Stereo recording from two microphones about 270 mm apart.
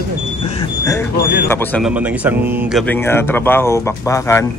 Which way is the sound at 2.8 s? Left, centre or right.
Centre.